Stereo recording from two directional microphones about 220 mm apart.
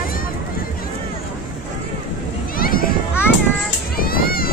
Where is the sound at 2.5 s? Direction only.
40° left (ahead or behind).